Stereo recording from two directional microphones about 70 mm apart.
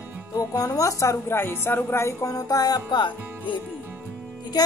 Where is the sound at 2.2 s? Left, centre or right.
Left.